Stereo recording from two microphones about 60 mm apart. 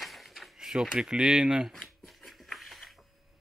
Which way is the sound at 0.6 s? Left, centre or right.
Centre.